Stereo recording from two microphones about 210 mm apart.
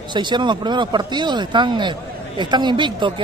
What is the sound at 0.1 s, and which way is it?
Speech, 20° right (ahead or behind).